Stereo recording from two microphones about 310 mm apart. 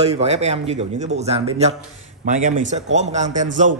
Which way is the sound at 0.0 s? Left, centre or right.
Centre.